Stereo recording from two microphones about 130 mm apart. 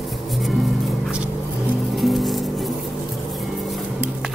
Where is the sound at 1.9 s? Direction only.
Centre (ahead or behind).